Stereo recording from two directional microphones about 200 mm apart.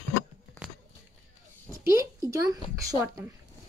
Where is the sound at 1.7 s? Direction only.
15° right (ahead or behind).